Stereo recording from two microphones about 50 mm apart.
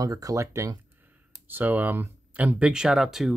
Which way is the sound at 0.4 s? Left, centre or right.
Right.